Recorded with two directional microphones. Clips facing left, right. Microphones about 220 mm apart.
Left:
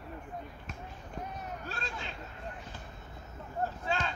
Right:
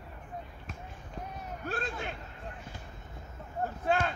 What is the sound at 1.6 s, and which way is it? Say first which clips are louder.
Hubbub: right 5 dB; 55° right (ahead or behind).